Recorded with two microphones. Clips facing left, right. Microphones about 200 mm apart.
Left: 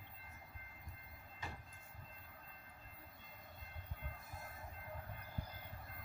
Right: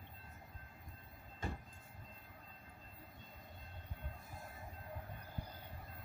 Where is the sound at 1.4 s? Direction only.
50° right (ahead or behind).